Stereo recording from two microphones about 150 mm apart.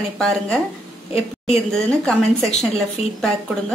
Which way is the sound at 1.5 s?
5° left (ahead or behind).